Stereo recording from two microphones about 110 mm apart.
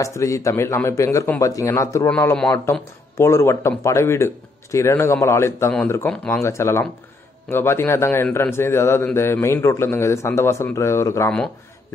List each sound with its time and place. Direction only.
0.0 s a man's voice: 30° left (ahead or behind)